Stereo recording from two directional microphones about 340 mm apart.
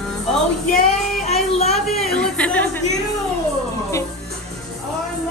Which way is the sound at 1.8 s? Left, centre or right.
Centre.